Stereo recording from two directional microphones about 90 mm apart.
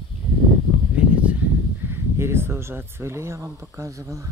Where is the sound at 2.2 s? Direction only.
25° right (ahead or behind).